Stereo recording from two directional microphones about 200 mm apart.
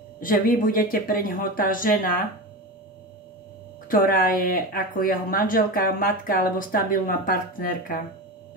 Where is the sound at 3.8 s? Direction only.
45° left (ahead or behind).